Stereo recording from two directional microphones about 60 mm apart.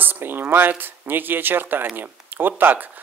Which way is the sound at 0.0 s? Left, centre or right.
Right.